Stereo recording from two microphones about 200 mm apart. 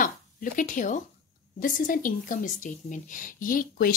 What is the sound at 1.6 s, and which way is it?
Speech, 45° left (ahead or behind).